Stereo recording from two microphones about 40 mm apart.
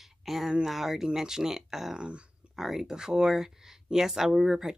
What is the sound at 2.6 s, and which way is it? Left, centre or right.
Speech, centre.